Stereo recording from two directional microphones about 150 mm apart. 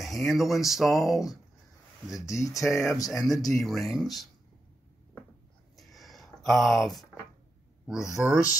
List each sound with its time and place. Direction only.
0.0 s speech: centre (ahead or behind)
2.1 s speech: 20° left (ahead or behind)
2.7 s speech: centre (ahead or behind)
5.8 s a sound: centre (ahead or behind)
8.2 s speech: 5° right (ahead or behind)